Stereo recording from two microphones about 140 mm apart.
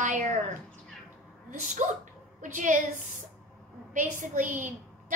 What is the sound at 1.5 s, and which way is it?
A woman's voice, 60° right (ahead or behind).